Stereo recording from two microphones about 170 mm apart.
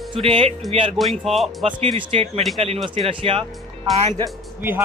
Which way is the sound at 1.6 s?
30° right (ahead or behind).